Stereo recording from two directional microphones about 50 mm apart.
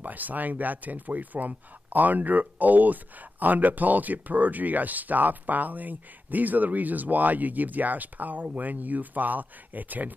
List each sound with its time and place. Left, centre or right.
0.0 s speech: right